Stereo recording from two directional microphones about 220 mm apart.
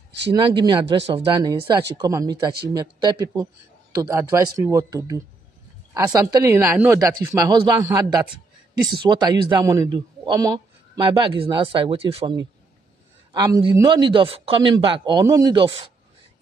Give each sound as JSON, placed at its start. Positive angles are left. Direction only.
{"t": 0.3, "sound": "a man's voice", "side_deg": -20}